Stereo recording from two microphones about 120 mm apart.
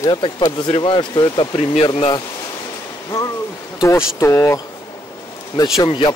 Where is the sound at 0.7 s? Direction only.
50° left (ahead or behind).